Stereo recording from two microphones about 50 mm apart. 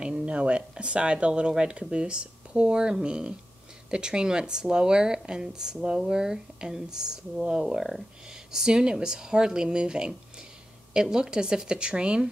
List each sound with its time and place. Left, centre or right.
0.0 s speech: right